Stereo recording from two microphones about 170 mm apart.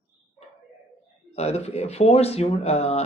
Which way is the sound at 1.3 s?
40° left (ahead or behind).